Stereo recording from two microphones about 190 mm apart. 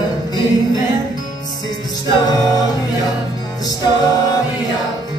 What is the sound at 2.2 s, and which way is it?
A capella, 20° left (ahead or behind).